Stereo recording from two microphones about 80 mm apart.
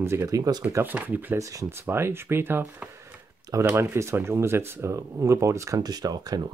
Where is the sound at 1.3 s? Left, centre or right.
Right.